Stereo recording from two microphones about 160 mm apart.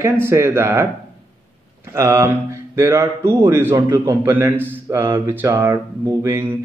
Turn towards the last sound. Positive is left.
turn(degrees=-15)  # may be behind; listen again after turning